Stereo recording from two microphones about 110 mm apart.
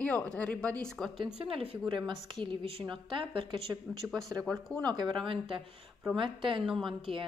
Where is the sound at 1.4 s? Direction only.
60° right (ahead or behind).